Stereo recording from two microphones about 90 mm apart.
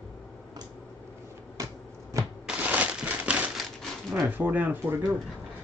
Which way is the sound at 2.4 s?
15° right (ahead or behind).